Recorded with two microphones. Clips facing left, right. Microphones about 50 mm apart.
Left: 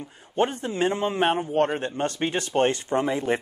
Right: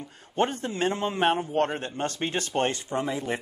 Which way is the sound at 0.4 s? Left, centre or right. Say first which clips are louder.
Left 2 dB; centre.